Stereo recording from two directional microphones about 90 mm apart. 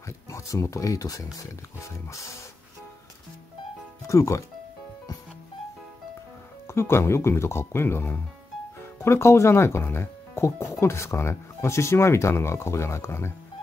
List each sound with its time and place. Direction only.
0.0 s speech: 35° left (ahead or behind)
4.1 s speech: 35° left (ahead or behind)
6.7 s speech: 30° left (ahead or behind)